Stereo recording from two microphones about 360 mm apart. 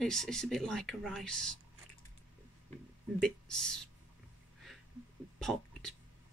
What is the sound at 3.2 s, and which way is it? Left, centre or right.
Speech, centre.